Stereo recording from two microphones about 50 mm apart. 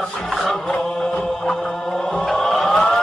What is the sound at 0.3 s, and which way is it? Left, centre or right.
Music, centre.